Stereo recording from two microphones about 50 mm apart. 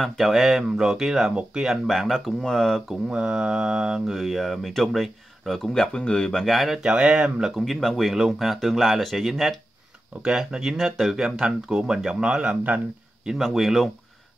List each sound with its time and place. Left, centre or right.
0.0 s mantra: centre
1.3 s speech: centre
1.7 s mantra: centre
2.9 s mantra: centre
6.4 s mantra: centre
6.8 s speech: centre
7.5 s mantra: centre
10.2 s speech: centre
10.8 s mantra: centre
11.2 s speech: centre
12.4 s speech: right
13.4 s mantra: centre